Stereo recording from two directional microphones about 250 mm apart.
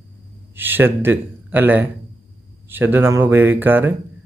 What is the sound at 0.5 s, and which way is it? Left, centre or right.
Speech, centre.